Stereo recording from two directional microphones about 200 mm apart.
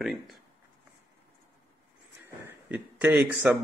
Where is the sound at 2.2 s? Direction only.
5° right (ahead or behind).